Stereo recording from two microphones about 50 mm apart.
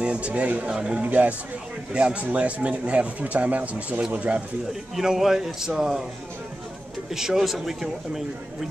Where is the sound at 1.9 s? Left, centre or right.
Right.